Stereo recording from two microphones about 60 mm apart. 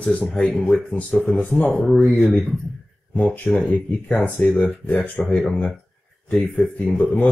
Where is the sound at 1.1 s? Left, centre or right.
Centre.